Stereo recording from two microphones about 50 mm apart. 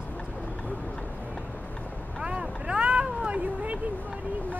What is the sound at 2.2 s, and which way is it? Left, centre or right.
Vehicle, centre.